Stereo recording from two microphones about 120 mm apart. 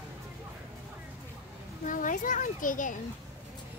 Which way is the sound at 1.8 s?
90° left.